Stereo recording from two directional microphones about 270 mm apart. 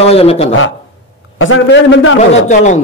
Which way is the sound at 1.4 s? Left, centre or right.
Left.